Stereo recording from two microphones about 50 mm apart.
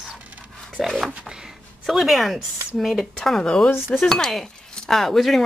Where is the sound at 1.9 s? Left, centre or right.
Centre.